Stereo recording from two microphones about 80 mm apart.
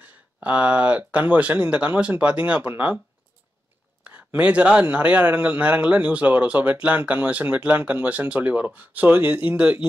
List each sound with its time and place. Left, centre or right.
0.0 s speech: centre
4.0 s a sound: centre
4.8 s speech: centre